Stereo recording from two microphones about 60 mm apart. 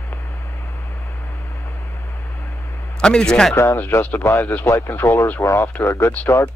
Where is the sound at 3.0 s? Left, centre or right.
Centre.